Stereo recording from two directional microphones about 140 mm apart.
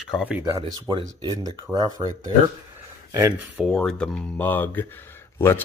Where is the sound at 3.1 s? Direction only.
25° right (ahead or behind).